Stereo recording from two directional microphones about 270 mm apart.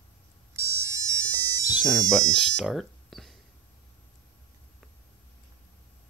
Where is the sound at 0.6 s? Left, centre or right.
Centre.